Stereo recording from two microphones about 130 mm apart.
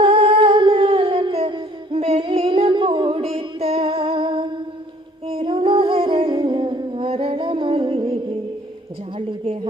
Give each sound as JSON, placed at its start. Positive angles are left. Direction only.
{"t": 0.0, "sound": "humming", "side_deg": -40}
{"t": 5.3, "sound": "music", "side_deg": -40}
{"t": 9.4, "sound": "a woman's voice", "side_deg": -50}